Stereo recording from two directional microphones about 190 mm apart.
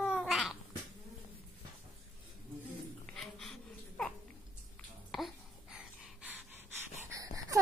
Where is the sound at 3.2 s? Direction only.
Centre (ahead or behind).